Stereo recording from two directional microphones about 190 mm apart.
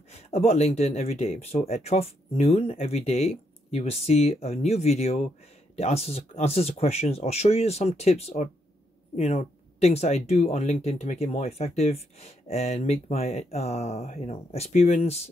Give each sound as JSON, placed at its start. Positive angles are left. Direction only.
{"t": 0.3, "sound": "speech", "side_deg": 35}